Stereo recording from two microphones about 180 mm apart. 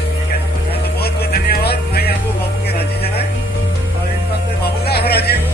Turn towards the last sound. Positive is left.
turn(degrees=60)  # may be behind; listen again after turning